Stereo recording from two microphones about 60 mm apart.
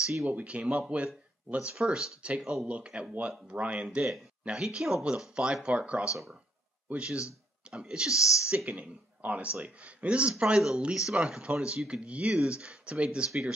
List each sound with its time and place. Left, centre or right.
0.0 s speech: centre
0.3 s speech: right
4.0 s speech: centre